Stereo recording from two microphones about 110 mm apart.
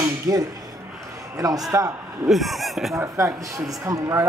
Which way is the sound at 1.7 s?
30° right (ahead or behind).